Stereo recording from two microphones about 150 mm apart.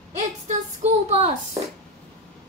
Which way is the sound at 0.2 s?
50° right (ahead or behind).